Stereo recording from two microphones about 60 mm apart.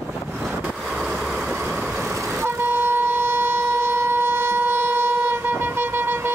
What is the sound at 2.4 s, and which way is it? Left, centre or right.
Vehicle, right.